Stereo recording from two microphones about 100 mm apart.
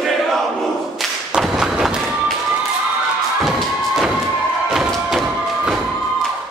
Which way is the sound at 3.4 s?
5° right (ahead or behind).